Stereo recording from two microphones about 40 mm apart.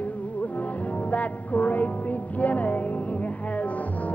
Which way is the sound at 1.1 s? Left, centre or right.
Left.